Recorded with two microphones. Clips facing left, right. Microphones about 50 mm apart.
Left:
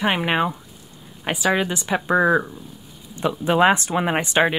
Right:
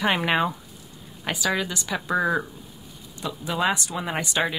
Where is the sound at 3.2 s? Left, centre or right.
Left.